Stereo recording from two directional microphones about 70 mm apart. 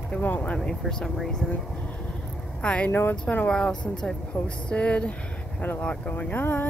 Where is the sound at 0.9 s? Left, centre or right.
Centre.